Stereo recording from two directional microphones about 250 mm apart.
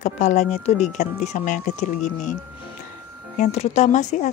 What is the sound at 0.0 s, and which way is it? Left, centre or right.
Speech, left.